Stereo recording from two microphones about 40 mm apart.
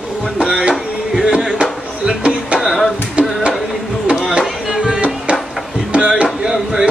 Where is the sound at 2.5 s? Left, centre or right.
Centre.